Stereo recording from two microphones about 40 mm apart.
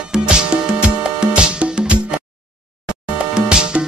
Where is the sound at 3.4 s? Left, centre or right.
Right.